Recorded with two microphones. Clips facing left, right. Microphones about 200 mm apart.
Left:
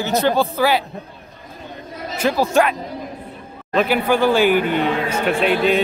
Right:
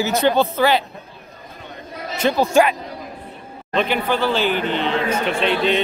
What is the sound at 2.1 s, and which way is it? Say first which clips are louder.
Speech: right 1 dB; 5° left (ahead or behind).